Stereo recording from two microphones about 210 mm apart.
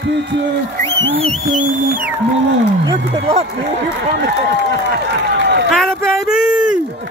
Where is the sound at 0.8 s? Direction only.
10° left (ahead or behind).